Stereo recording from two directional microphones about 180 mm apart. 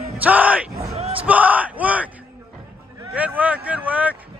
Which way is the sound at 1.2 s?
10° right (ahead or behind).